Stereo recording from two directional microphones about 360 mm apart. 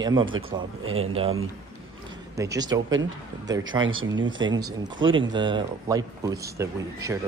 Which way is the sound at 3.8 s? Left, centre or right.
Right.